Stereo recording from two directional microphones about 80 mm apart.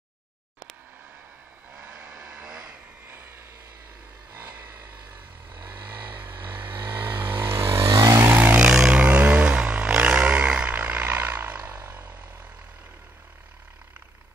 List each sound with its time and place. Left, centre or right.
1.7 s vehicle: centre
3.1 s vehicle: right
4.6 s vehicle: right
6.2 s vehicle: right
7.9 s vehicle: right
8.3 s vehicle: right
8.5 s a sound: centre